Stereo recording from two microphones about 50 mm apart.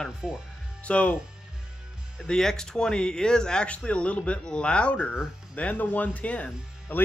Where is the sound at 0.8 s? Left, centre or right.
Left.